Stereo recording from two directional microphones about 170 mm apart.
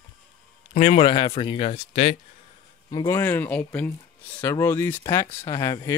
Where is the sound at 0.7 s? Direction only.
45° left (ahead or behind).